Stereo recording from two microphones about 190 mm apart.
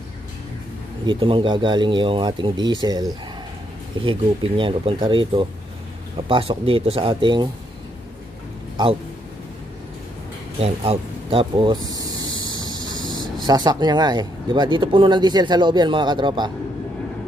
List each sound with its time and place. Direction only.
1.0 s speech: 25° right (ahead or behind)
10.6 s speech: 30° right (ahead or behind)
12.4 s train: 25° left (ahead or behind)
12.7 s train: 25° right (ahead or behind)
13.2 s speech: 20° right (ahead or behind)